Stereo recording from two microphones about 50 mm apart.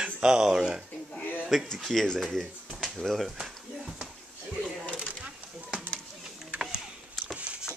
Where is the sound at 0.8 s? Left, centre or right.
Left.